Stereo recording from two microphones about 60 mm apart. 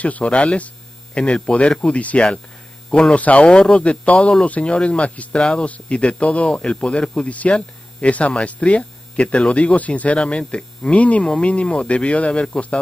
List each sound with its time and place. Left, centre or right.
0.0 s speech: left